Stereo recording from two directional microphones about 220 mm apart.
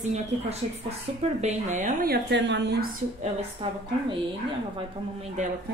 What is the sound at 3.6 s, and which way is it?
Speech, 25° right (ahead or behind).